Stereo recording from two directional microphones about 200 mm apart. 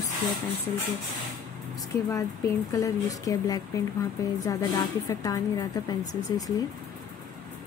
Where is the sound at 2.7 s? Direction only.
15° left (ahead or behind).